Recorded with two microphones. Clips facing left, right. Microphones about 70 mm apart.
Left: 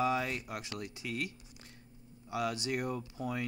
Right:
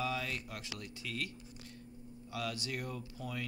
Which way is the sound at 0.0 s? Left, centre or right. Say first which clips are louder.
Left 6 dB; left.